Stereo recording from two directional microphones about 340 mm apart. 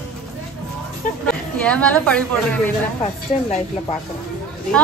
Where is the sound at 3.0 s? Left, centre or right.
Centre.